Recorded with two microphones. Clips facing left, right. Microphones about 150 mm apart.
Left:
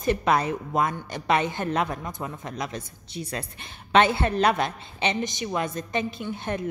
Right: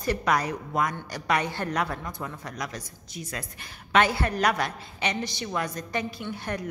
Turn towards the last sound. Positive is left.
turn(degrees=25)  # may be behind; listen again after turning